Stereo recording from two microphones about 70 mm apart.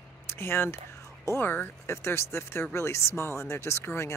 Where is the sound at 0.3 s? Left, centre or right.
Left.